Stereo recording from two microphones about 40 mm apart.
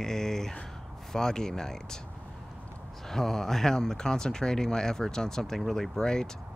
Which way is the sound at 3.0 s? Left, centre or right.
Centre.